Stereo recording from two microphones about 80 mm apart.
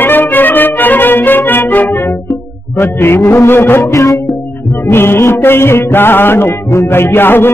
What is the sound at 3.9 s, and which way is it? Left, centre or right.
Music, left.